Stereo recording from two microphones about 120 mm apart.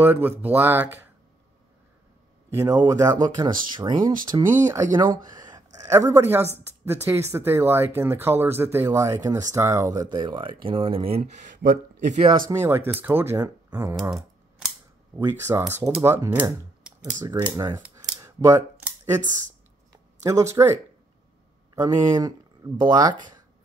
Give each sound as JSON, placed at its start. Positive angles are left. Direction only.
{"t": 0.0, "sound": "speech", "side_deg": -15}
{"t": 2.5, "sound": "speech", "side_deg": -25}
{"t": 3.7, "sound": "speech", "side_deg": -40}
{"t": 12.0, "sound": "speech", "side_deg": -80}
{"t": 12.4, "sound": "speech", "side_deg": -25}
{"t": 15.1, "sound": "speech", "side_deg": -20}
{"t": 18.2, "sound": "a sound", "side_deg": -25}
{"t": 20.2, "sound": "speech", "side_deg": -25}
{"t": 21.7, "sound": "speech", "side_deg": -30}